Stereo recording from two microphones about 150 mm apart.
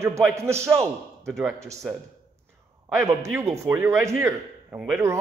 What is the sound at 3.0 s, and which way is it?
Speech, 20° right (ahead or behind).